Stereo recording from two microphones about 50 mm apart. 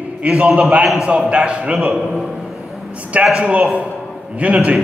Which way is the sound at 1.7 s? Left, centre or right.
Centre.